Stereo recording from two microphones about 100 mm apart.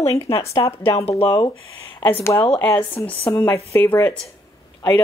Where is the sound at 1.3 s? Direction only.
45° left (ahead or behind).